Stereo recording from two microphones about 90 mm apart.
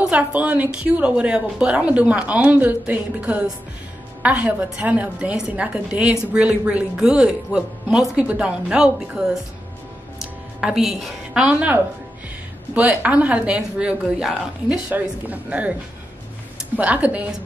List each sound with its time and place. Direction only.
0.0 s a woman's voice: 15° right (ahead or behind)
10.6 s a woman's voice: 5° right (ahead or behind)
12.7 s a woman's voice: 15° right (ahead or behind)
14.9 s a woman's voice: 20° right (ahead or behind)
16.7 s a woman's voice: 15° right (ahead or behind)